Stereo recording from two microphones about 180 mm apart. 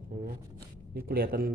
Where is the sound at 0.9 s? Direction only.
55° right (ahead or behind).